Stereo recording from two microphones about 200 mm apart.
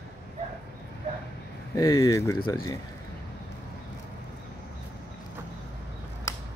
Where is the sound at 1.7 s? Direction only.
15° left (ahead or behind).